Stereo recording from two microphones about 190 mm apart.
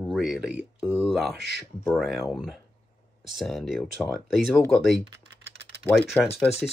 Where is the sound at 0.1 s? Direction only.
5° right (ahead or behind).